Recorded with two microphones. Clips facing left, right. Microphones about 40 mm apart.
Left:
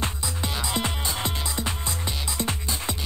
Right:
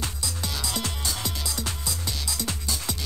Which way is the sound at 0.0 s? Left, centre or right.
Left.